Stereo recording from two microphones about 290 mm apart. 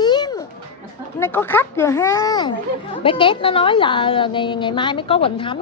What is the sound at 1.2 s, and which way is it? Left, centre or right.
A woman's voice, centre.